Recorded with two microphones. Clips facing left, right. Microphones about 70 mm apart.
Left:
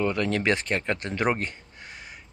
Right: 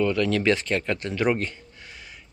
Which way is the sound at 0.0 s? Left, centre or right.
Left.